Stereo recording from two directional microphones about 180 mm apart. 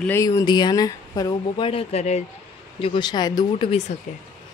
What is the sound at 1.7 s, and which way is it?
Speech, 35° left (ahead or behind).